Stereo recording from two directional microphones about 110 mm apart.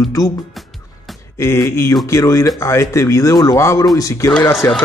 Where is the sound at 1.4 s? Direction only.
25° left (ahead or behind).